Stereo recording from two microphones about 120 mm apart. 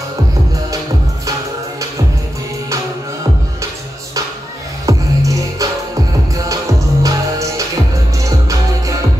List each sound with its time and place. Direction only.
4.8 s music: 25° right (ahead or behind)